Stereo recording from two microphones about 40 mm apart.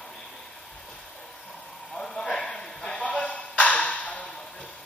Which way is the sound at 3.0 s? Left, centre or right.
Left.